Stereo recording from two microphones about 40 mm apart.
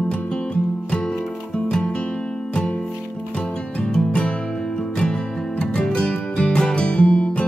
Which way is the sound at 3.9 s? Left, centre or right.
Left.